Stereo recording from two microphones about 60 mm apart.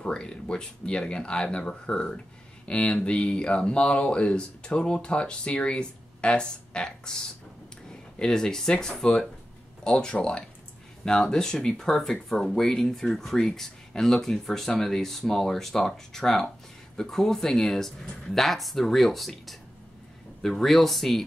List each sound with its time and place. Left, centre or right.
0.0 s speech: centre